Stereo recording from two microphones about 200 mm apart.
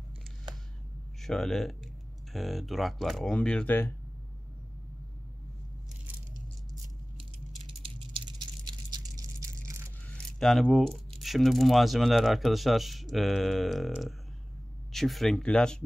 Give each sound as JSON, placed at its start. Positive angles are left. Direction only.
{"t": 1.2, "sound": "speech", "side_deg": 0}
{"t": 7.6, "sound": "a sound", "side_deg": -25}
{"t": 10.0, "sound": "keys jangling", "side_deg": 5}
{"t": 11.1, "sound": "speech", "side_deg": 0}